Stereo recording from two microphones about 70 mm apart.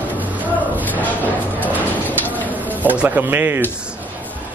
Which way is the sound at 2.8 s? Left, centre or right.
Right.